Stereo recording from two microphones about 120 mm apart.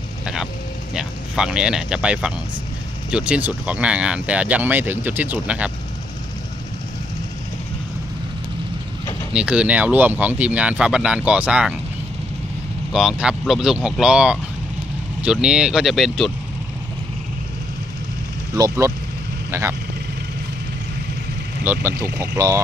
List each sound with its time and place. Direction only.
0.9 s speech: 5° right (ahead or behind)
9.3 s speech: 10° right (ahead or behind)
12.9 s speech: 5° right (ahead or behind)
18.5 s speech: 30° right (ahead or behind)
21.6 s speech: 20° right (ahead or behind)